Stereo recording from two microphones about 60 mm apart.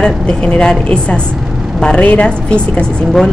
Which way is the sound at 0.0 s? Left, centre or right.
Centre.